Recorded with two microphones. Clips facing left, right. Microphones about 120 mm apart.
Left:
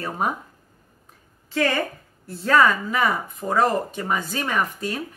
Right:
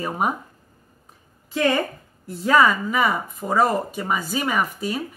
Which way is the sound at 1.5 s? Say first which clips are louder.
Right 2 dB; 20° right (ahead or behind).